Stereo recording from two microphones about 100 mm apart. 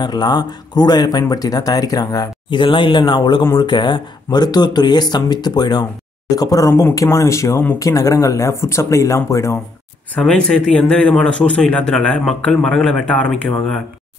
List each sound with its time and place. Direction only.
0.0 s speech: 45° left (ahead or behind)
2.5 s speech: 55° left (ahead or behind); by 9.6 s 30° left (ahead or behind)
10.1 s a man's voice: 10° left (ahead or behind)